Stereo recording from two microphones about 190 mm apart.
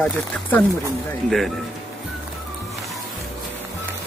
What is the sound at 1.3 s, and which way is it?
Speech, centre (ahead or behind).